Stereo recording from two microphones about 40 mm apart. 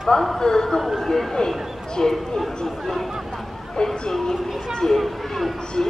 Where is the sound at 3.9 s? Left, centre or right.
Centre.